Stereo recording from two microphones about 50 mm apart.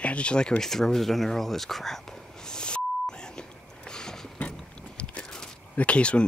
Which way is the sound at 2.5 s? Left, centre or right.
Centre.